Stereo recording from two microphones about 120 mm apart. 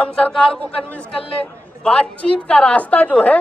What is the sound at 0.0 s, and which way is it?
Speech, 10° left (ahead or behind).